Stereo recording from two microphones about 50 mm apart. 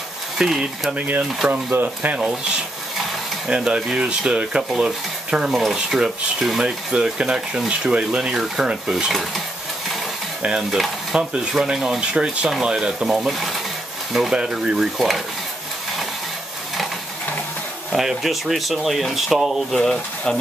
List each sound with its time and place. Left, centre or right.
0.4 s speech: centre
0.9 s speech: right
3.4 s speech: centre
10.4 s speech: centre
14.3 s speech: centre
15.0 s speech: centre
17.9 s speech: centre
19.7 s speech: centre